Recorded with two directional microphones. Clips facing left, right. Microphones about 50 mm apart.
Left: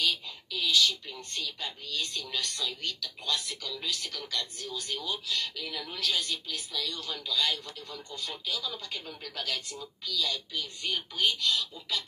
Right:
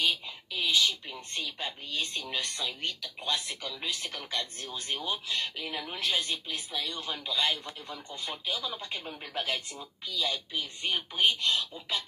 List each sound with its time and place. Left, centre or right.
0.0 s a woman's voice: right